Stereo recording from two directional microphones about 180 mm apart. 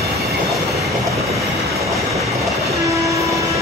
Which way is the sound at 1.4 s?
15° right (ahead or behind).